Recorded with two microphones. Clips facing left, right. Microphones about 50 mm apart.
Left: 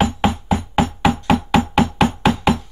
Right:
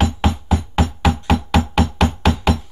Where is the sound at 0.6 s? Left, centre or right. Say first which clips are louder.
Left 3 dB; centre.